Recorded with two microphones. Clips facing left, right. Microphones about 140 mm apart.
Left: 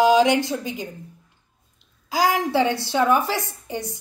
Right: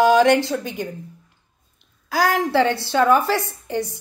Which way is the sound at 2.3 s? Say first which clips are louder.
Right 2 dB; 15° left (ahead or behind).